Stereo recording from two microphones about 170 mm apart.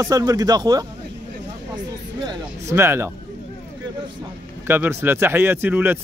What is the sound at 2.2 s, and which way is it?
Speech, 20° right (ahead or behind).